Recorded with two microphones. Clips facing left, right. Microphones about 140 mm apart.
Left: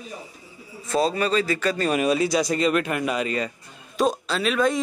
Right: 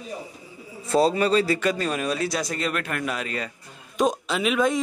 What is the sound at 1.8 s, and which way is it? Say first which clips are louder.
Speech: left 4 dB; 10° left (ahead or behind).